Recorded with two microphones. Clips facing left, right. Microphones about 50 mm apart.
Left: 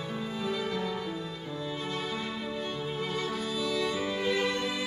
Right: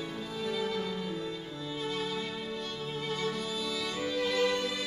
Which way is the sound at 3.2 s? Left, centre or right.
Centre.